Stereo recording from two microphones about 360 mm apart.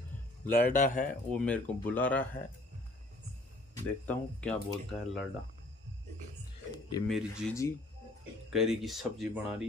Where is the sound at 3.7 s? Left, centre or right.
Centre.